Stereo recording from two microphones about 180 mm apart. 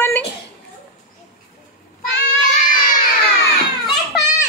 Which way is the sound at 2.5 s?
50° left (ahead or behind).